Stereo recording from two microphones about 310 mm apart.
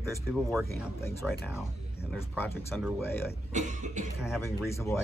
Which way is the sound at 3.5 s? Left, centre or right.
Right.